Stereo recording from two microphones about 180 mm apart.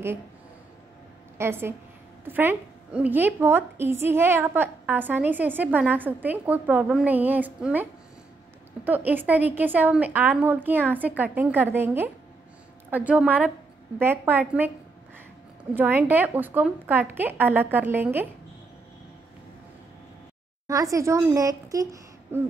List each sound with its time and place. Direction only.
1.4 s a woman's voice: 15° right (ahead or behind)
15.7 s a woman's voice: 10° right (ahead or behind)
20.6 s speech: 20° right (ahead or behind)